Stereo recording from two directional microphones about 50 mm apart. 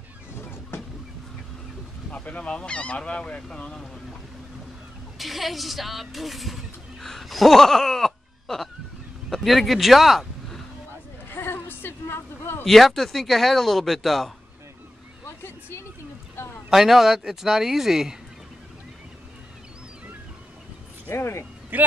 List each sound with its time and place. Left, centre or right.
0.4 s vehicle: left
2.0 s speech: left
5.2 s speech: centre
11.2 s bleat: left
12.6 s speech: centre
15.2 s a sound: left
16.7 s a man's voice: centre
21.1 s speech: left
21.7 s a man's voice: right